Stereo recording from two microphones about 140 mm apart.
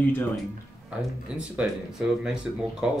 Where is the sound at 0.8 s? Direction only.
5° right (ahead or behind).